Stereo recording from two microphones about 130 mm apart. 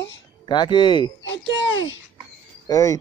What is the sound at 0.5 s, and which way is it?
Speech, 35° left (ahead or behind).